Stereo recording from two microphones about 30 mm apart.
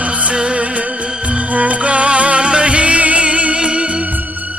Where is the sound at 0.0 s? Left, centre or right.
Right.